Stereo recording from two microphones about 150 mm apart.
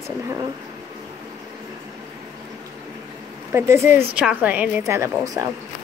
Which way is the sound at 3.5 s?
15° right (ahead or behind).